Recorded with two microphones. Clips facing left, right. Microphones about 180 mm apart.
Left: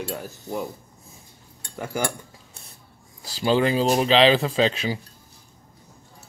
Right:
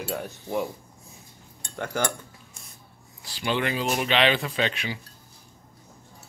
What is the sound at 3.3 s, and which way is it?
Speech, 35° left (ahead or behind).